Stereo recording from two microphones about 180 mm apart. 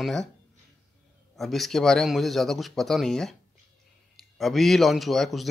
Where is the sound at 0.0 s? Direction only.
Centre (ahead or behind).